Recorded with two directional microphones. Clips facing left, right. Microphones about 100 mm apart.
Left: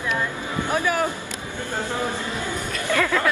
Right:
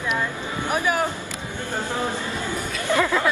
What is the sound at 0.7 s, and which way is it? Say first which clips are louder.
Speech: even; 20° right (ahead or behind).